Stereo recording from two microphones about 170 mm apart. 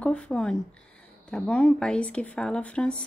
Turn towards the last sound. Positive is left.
turn(degrees=5)  # may be behind; listen again after turning